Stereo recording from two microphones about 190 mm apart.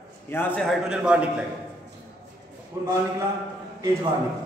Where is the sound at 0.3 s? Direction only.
10° left (ahead or behind).